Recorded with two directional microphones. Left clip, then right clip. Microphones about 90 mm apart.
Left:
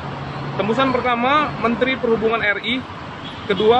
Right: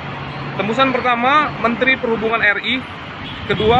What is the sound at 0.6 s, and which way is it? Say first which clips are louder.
Speech: right 2 dB; 20° left (ahead or behind).